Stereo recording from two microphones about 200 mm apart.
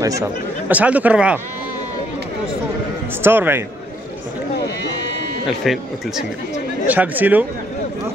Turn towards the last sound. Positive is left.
turn(degrees=-10)  # may be behind; listen again after turning